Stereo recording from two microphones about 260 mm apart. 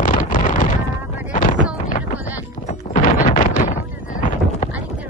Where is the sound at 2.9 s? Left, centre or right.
Left.